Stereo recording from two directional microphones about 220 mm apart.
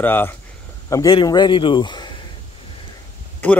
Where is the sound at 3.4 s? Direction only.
10° left (ahead or behind).